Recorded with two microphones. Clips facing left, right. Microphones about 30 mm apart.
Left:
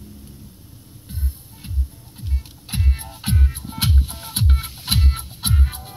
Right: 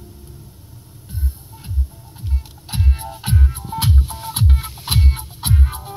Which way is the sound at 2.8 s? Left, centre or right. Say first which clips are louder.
Right 7 dB; centre.